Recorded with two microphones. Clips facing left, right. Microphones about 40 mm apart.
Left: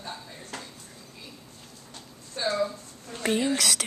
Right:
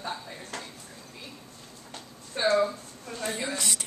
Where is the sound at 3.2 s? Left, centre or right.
Left.